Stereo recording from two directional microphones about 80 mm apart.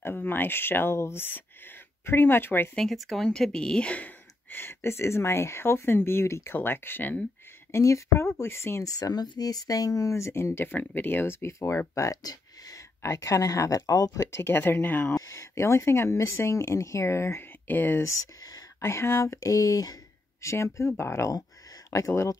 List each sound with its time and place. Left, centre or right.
0.0 s speech: left
2.7 s speech: centre; by 7.2 s left
7.7 s speech: left
8.8 s speech: left
14.4 s speech: left
15.1 s speech: left
18.8 s speech: left
20.4 s speech: left